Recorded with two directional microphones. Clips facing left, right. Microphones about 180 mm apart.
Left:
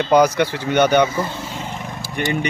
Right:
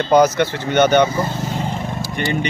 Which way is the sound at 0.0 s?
10° left (ahead or behind).